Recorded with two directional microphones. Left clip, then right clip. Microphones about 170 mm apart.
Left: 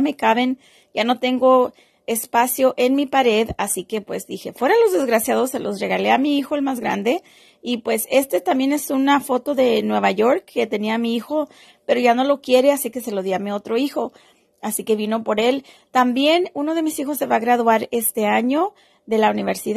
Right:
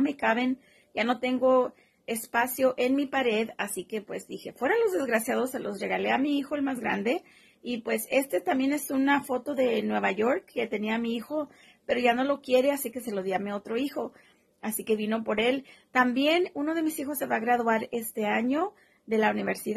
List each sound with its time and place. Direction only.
0.0 s a woman's voice: 40° left (ahead or behind)